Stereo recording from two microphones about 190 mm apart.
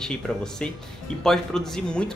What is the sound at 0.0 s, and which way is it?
Speech, 5° left (ahead or behind).